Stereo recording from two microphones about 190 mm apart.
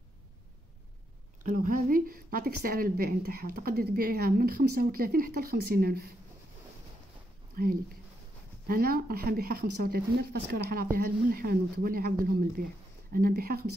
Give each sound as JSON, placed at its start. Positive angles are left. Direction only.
{"t": 1.4, "sound": "a woman's voice", "side_deg": -45}
{"t": 7.5, "sound": "a woman's voice", "side_deg": -50}